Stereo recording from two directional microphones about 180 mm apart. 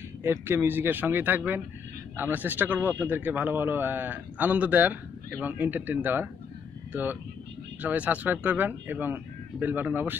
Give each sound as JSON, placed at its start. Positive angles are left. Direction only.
{"t": 0.2, "sound": "a man's voice", "side_deg": -10}